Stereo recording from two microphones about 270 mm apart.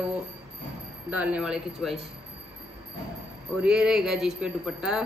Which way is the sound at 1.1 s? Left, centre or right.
Centre.